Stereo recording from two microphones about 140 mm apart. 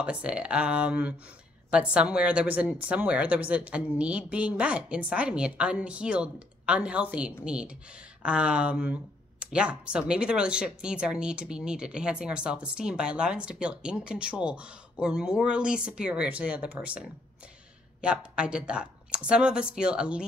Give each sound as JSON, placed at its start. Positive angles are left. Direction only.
{"t": 0.0, "sound": "speech", "side_deg": -10}
{"t": 18.0, "sound": "speech", "side_deg": -5}